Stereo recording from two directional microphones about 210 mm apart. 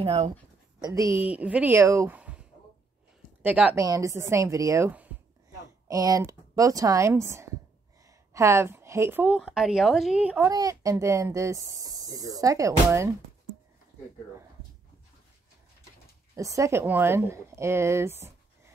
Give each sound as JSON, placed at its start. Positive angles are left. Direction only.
{"t": 0.0, "sound": "speech", "side_deg": -30}
{"t": 0.7, "sound": "a woman's voice", "side_deg": -15}
{"t": 1.3, "sound": "speech", "side_deg": -5}
{"t": 3.4, "sound": "speech", "side_deg": -5}
{"t": 10.5, "sound": "speech", "side_deg": -15}
{"t": 16.3, "sound": "speech", "side_deg": -15}